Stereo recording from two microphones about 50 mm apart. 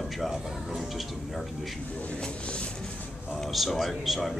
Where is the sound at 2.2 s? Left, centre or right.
Left.